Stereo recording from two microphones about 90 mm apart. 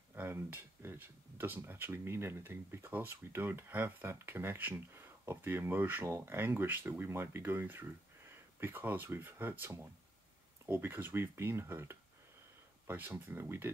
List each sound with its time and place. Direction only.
0.1 s speech: 20° right (ahead or behind)